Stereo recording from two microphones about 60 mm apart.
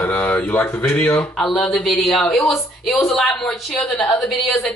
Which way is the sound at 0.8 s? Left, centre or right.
Left.